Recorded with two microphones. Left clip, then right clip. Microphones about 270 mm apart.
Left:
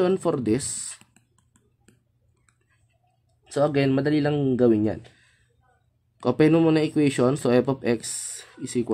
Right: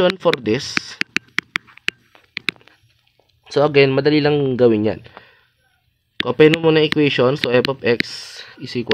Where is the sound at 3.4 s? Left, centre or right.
Right.